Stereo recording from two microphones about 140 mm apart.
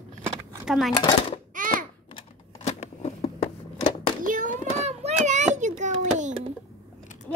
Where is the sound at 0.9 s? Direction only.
35° left (ahead or behind).